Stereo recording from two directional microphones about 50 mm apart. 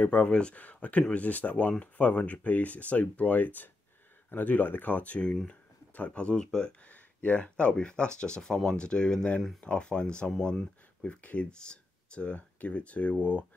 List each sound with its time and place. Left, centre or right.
0.0 s speech: left
6.4 s speech: centre
6.9 s speech: left